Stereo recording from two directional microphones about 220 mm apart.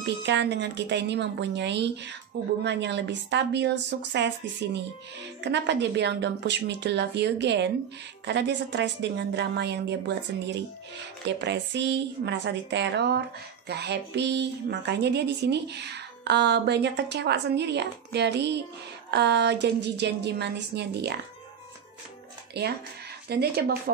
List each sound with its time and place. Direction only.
0.0 s a woman's voice: 50° right (ahead or behind)
23.2 s a woman's voice: 45° right (ahead or behind)